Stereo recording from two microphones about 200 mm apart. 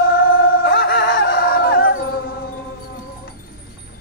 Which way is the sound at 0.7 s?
55° left (ahead or behind).